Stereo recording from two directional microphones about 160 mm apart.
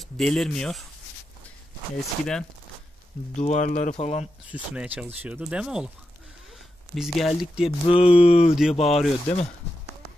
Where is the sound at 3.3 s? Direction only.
50° left (ahead or behind).